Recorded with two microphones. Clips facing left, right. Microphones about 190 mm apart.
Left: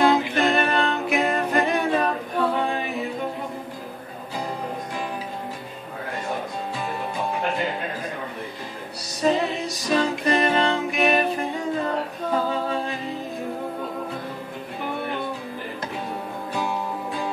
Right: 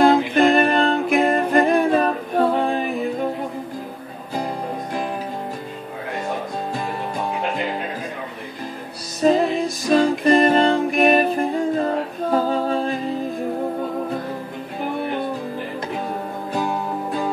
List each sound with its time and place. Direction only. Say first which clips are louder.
0.0 s music: right 5 dB; 50° right (ahead or behind)
9.2 s music: right 5 dB; 40° right (ahead or behind)
10.3 s music: right 6 dB; 35° right (ahead or behind)